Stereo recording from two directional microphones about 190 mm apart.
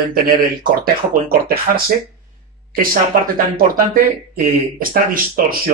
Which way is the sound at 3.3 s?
50° right (ahead or behind).